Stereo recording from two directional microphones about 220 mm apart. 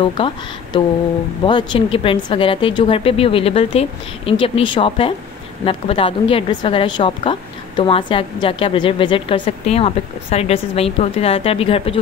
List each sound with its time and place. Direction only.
0.7 s a woman's voice: 25° left (ahead or behind)